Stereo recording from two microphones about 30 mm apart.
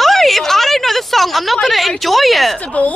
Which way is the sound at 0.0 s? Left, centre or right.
Centre.